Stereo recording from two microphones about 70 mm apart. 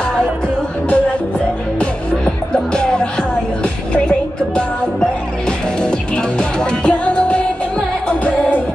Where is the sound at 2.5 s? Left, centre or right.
Centre.